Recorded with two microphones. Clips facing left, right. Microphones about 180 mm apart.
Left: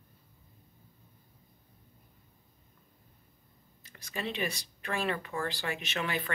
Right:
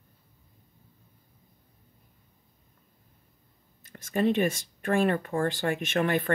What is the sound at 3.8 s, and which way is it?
Speech, 50° right (ahead or behind).